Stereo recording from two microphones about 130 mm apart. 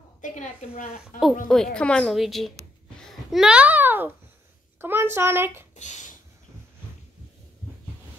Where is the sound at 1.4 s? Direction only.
5° left (ahead or behind); by 5.6 s 15° right (ahead or behind).